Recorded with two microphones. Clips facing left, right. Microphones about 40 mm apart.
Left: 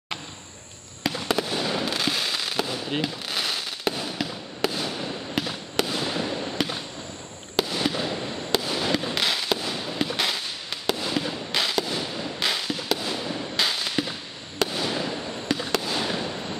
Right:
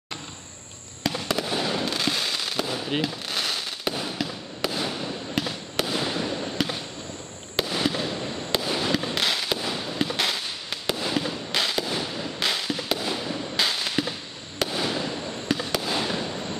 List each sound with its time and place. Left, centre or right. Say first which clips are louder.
1.0 s fireworks: left 1 dB; centre
7.8 s fireworks: even; centre